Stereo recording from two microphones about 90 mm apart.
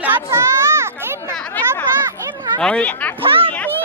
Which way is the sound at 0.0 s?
30° right (ahead or behind).